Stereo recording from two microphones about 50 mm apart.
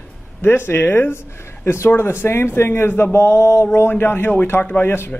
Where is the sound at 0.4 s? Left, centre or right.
Left.